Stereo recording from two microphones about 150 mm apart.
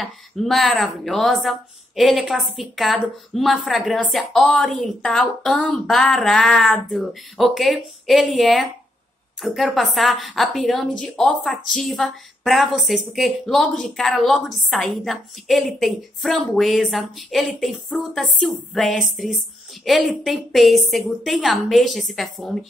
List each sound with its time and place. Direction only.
0.0 s a woman's voice: centre (ahead or behind)